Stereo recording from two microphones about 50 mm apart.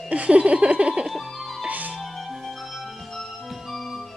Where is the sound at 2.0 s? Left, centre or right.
Centre.